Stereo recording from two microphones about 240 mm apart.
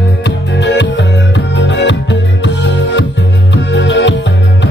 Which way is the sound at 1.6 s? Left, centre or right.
Left.